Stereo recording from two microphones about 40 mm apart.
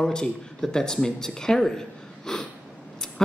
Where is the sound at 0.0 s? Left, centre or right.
Centre.